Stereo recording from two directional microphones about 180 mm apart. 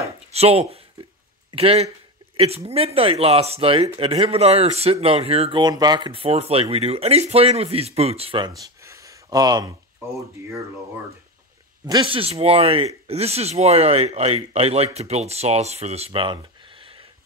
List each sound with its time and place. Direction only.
0.3 s speech: 35° right (ahead or behind)
11.8 s speech: 25° right (ahead or behind)